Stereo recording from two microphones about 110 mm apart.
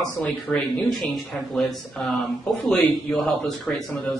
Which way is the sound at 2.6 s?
Centre (ahead or behind).